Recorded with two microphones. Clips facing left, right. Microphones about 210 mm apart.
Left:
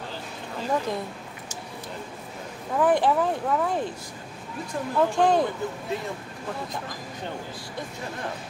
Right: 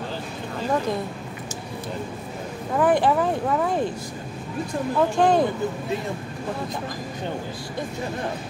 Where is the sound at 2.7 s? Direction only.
5° right (ahead or behind).